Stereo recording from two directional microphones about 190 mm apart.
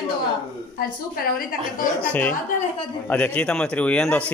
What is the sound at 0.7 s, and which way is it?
Speech, 50° left (ahead or behind).